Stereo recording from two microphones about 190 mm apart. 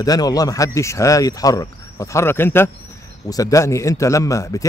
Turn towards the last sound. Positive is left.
turn(degrees=15)  # may be behind; listen again after turning